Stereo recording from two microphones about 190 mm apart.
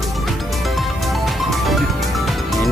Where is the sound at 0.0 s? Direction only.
Centre (ahead or behind).